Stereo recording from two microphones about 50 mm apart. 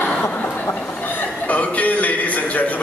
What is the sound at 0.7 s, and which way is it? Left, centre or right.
A man's voice, left.